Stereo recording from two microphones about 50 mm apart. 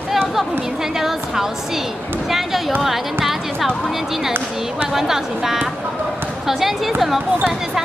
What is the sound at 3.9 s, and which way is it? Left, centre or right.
A woman's voice, centre.